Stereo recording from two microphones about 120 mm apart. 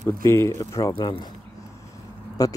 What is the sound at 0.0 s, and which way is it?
Speech, 25° left (ahead or behind).